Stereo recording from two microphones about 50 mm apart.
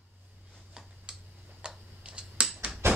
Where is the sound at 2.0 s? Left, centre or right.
Right.